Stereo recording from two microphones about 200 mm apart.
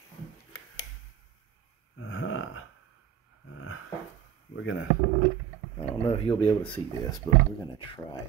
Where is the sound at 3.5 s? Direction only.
90° left.